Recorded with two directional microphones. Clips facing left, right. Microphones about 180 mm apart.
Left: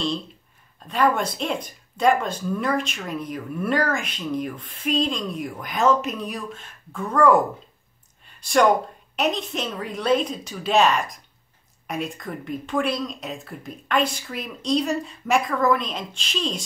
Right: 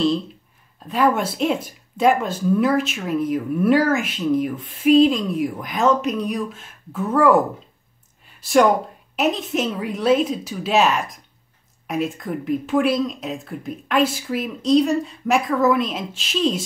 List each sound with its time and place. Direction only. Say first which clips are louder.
0.8 s speech: right 2 dB; 5° right (ahead or behind)
8.4 s speech: right 2 dB; 5° right (ahead or behind)